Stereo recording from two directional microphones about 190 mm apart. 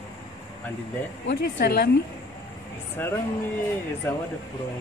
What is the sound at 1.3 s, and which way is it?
Speech, 55° left (ahead or behind).